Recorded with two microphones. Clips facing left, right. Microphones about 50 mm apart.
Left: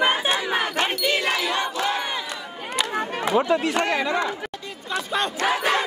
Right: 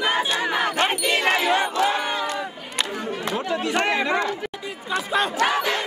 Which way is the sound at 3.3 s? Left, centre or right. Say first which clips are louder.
Left 7 dB; left.